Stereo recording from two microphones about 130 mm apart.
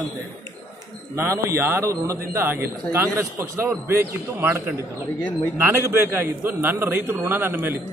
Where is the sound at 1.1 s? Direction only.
20° right (ahead or behind).